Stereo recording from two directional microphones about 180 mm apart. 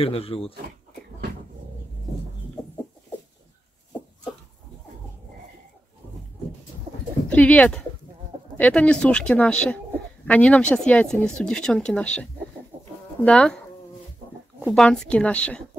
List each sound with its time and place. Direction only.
0.0 s speech: 30° left (ahead or behind)
7.2 s speech: 10° left (ahead or behind)
12.7 s chicken: 40° right (ahead or behind)
13.2 s a woman's voice: 5° left (ahead or behind)
14.6 s a woman's voice: 5° left (ahead or behind)